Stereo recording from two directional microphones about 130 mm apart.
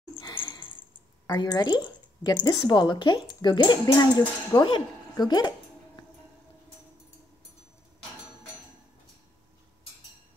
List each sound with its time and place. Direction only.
0.2 s sniff: 35° left (ahead or behind)
1.2 s speech: 30° left (ahead or behind)